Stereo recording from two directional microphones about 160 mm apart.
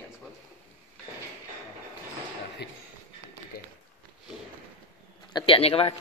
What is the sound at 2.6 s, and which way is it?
Speech, 90° left.